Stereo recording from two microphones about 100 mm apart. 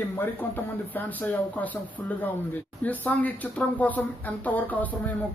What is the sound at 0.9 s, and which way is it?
Speech, 20° left (ahead or behind).